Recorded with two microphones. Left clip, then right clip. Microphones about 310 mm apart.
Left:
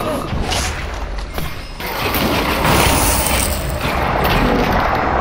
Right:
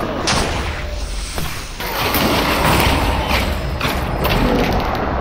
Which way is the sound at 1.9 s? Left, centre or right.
Centre.